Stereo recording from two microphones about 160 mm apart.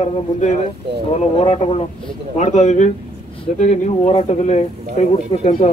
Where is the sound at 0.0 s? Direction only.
45° left (ahead or behind).